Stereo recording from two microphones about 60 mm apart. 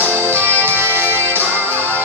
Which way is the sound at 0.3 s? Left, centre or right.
Right.